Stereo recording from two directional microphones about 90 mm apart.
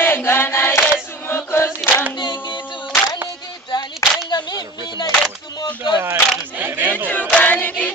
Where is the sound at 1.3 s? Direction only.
25° left (ahead or behind).